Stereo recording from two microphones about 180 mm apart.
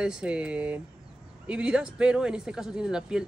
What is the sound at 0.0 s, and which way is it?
Speech, 5° right (ahead or behind).